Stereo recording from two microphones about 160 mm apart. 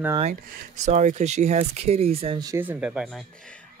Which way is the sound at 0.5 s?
50° right (ahead or behind).